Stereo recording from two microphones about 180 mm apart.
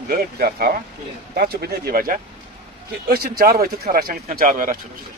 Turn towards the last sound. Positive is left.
turn(degrees=-50)  # may be behind; listen again after turning